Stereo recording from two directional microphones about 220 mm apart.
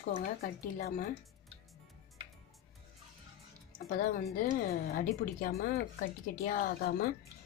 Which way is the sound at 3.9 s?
40° left (ahead or behind).